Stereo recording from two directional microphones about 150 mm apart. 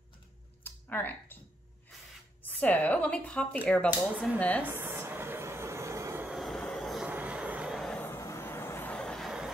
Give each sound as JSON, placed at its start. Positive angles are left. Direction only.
{"t": 0.7, "sound": "a sound", "side_deg": 15}
{"t": 2.4, "sound": "speech", "side_deg": 10}
{"t": 4.6, "sound": "a sound", "side_deg": -15}
{"t": 6.2, "sound": "train", "side_deg": 0}
{"t": 6.6, "sound": "vehicle", "side_deg": 5}
{"t": 7.1, "sound": "vehicle", "side_deg": -10}
{"t": 8.0, "sound": "vehicle", "side_deg": 20}